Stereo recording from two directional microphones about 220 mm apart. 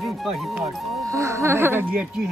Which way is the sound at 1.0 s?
15° right (ahead or behind).